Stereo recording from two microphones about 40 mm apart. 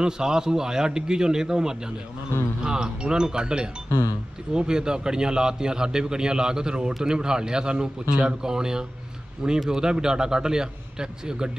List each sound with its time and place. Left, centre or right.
0.0 s a man's voice: centre